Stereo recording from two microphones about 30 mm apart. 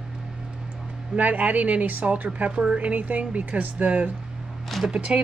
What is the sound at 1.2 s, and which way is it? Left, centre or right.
Speech, right.